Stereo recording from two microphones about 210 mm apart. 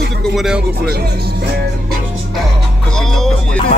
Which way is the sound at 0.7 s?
50° right (ahead or behind).